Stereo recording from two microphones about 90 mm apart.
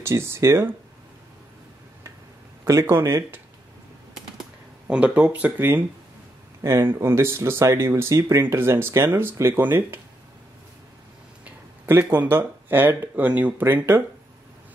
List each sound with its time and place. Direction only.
0.0 s speech: 30° right (ahead or behind)
2.6 s speech: 35° right (ahead or behind)
4.8 s speech: 10° right (ahead or behind)
11.4 s a sound: 20° right (ahead or behind)
12.1 s speech: 20° right (ahead or behind)